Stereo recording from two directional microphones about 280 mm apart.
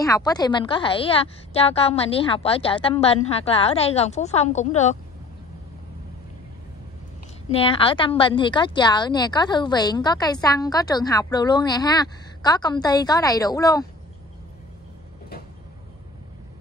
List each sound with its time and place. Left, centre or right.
0.0 s a woman's voice: centre
7.5 s speech: centre